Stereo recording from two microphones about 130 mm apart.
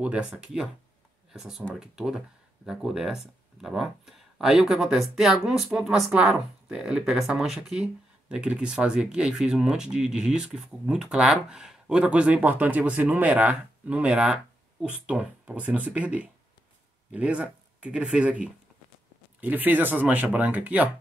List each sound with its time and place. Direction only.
0.0 s speech: 10° right (ahead or behind)